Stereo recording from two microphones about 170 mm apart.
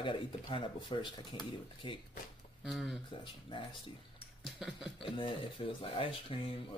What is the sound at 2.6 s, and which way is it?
Speech, centre (ahead or behind).